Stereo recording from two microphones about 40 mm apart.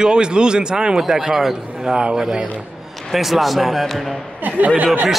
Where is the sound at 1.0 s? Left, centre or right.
Centre.